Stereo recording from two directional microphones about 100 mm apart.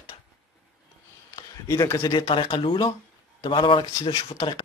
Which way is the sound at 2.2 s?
70° left (ahead or behind).